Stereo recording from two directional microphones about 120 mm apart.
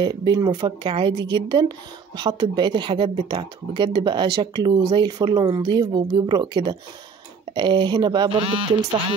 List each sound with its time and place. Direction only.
0.0 s speech: 40° right (ahead or behind)
0.8 s speech: 45° right (ahead or behind)
8.3 s speech: 55° right (ahead or behind)